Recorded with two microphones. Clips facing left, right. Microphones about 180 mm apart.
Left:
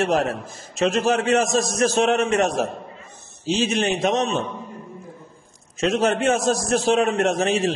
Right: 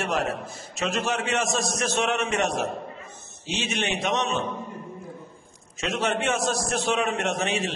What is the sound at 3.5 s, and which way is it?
Speech, 35° left (ahead or behind).